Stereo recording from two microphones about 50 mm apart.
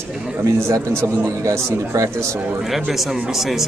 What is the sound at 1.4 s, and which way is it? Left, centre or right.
Speech, right.